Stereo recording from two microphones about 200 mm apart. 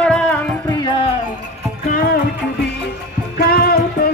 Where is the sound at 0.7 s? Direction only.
20° left (ahead or behind).